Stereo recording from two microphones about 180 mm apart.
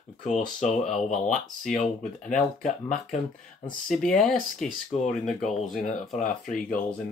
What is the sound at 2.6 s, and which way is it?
Speech, 45° left (ahead or behind).